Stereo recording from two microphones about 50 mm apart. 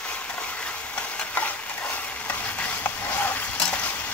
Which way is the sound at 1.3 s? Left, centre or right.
Left.